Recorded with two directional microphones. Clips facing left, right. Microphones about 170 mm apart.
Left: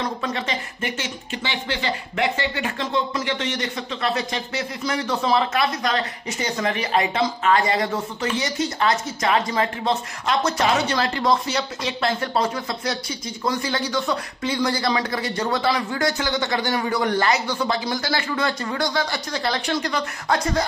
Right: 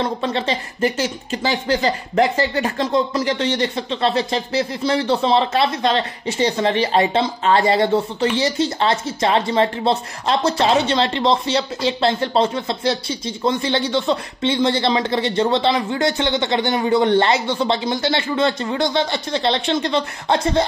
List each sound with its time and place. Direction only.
0.0 s speech: 30° right (ahead or behind)